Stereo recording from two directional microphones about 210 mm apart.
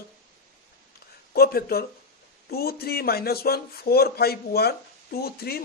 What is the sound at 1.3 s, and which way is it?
A man's voice, 45° left (ahead or behind).